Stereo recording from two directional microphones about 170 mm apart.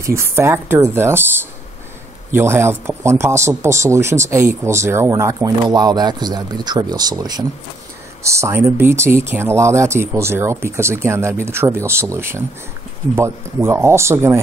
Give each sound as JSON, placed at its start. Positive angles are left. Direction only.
{"t": 0.0, "sound": "speech", "side_deg": -15}
{"t": 2.3, "sound": "speech", "side_deg": -15}